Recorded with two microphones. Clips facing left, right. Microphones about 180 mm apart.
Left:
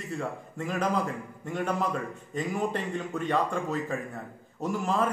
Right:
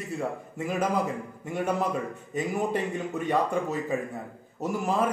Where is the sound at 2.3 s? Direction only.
5° right (ahead or behind).